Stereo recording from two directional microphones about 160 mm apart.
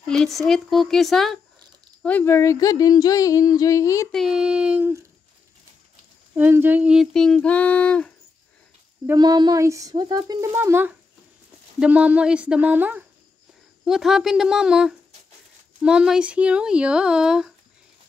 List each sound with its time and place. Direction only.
0.0 s speech: 5° left (ahead or behind)
2.0 s speech: 15° left (ahead or behind)
4.1 s speech: centre (ahead or behind)
6.3 s speech: 10° right (ahead or behind); by 8.1 s 5° left (ahead or behind)
9.1 s speech: 25° right (ahead or behind); by 17.5 s 5° right (ahead or behind)